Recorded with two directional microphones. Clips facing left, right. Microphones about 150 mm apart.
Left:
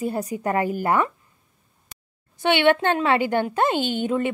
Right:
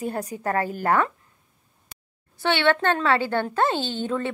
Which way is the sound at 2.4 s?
15° left (ahead or behind).